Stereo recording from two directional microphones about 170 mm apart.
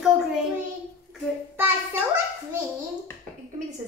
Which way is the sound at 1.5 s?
15° right (ahead or behind).